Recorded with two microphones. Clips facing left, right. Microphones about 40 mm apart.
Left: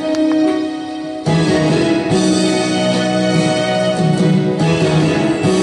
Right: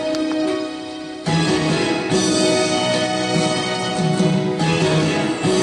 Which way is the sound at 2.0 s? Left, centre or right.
Centre.